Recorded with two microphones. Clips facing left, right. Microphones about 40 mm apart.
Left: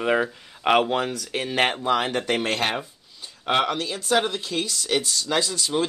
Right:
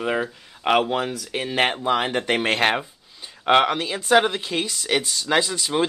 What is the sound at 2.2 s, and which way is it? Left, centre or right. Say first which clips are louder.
Speech: right 3 dB; right.